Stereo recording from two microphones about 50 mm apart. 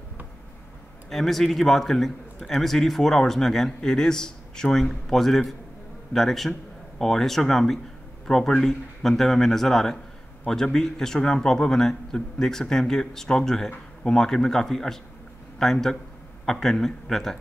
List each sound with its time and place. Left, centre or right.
1.1 s a man's voice: centre